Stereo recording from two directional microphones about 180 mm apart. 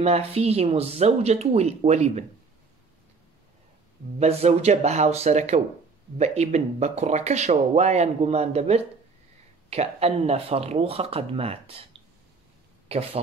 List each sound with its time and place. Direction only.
0.0 s speech: 35° right (ahead or behind)
4.2 s speech: 35° right (ahead or behind)
12.8 s speech: 35° right (ahead or behind)